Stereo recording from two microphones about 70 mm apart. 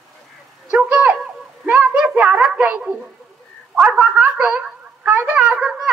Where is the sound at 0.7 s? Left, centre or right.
Right.